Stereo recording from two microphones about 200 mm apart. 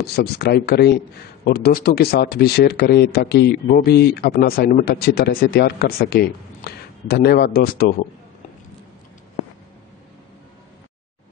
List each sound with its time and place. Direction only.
0.0 s speech: 55° left (ahead or behind)